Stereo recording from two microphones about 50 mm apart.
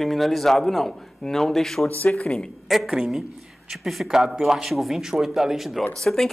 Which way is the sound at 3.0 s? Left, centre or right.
Centre.